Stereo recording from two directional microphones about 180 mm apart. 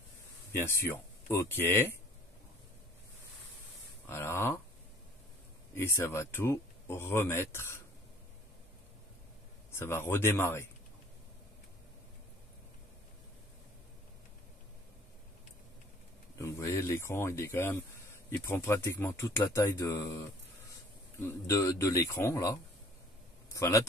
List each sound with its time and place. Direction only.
0.6 s speech: 15° left (ahead or behind)
4.1 s a sound: 15° left (ahead or behind)
5.8 s speech: 15° left (ahead or behind)
9.7 s speech: 15° left (ahead or behind)
16.3 s speech: 15° left (ahead or behind)
21.3 s speech: 15° left (ahead or behind)